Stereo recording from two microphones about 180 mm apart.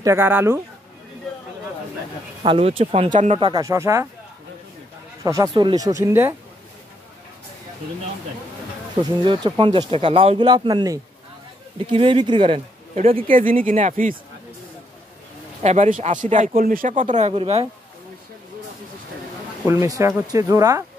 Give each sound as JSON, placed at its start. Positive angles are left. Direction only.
{"t": 0.0, "sound": "speech", "side_deg": -15}
{"t": 2.4, "sound": "speech", "side_deg": -30}
{"t": 3.3, "sound": "speech", "side_deg": -30}
{"t": 3.6, "sound": "speech", "side_deg": -15}
{"t": 5.2, "sound": "speech", "side_deg": -20}
{"t": 9.2, "sound": "speech", "side_deg": -25}
{"t": 13.3, "sound": "speech", "side_deg": -50}
{"t": 15.6, "sound": "speech", "side_deg": -40}
{"t": 19.6, "sound": "speech", "side_deg": -15}